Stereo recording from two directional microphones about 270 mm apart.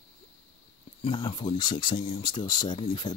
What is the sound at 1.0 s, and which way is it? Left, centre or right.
Speech, centre.